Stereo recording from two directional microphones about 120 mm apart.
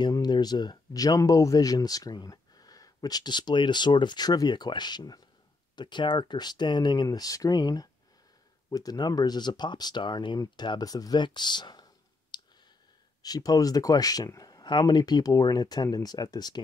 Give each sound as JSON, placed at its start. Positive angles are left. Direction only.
{"t": 0.0, "sound": "speech", "side_deg": 35}